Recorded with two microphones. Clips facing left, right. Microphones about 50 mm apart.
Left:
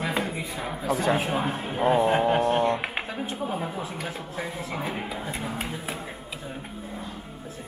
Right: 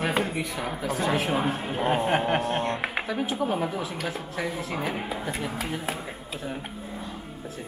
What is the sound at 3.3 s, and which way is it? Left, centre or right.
Speech, right.